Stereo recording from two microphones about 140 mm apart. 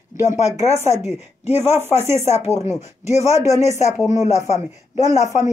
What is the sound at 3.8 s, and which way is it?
Speech, 55° left (ahead or behind).